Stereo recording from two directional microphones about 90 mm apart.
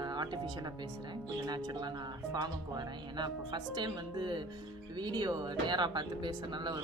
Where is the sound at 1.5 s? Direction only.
50° right (ahead or behind).